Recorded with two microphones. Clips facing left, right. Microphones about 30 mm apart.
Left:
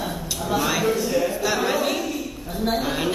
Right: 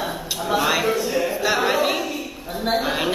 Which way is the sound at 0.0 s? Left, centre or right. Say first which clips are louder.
Right 2 dB; centre.